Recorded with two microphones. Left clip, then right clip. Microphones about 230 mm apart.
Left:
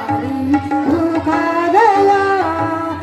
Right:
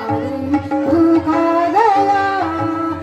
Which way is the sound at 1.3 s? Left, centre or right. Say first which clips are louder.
Even; left.